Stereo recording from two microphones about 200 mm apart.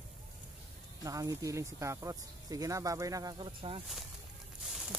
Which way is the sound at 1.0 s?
15° right (ahead or behind).